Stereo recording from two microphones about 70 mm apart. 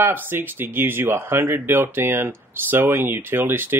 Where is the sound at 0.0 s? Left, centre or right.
Right.